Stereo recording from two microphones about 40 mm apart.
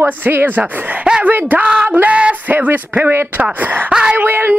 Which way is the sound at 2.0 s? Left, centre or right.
Right.